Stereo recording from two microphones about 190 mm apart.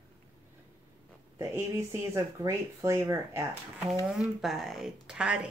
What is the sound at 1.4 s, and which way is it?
Speech, 15° right (ahead or behind).